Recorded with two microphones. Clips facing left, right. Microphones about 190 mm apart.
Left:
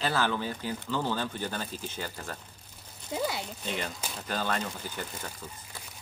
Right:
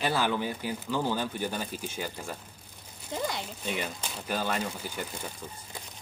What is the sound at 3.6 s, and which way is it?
Speech, 10° right (ahead or behind).